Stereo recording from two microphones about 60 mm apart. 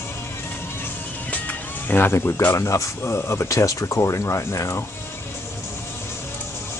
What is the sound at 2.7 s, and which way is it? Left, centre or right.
Speech, left.